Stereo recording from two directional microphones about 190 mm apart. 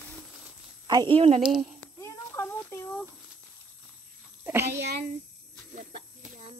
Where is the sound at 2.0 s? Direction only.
15° left (ahead or behind).